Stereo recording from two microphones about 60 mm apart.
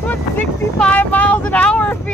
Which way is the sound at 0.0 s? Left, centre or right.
Left.